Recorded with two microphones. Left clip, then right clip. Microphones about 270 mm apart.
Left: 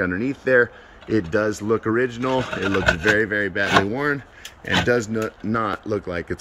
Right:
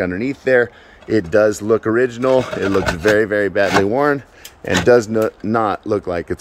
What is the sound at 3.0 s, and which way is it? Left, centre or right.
Speech, centre.